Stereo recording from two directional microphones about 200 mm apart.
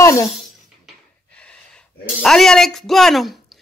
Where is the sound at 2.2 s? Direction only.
Centre (ahead or behind).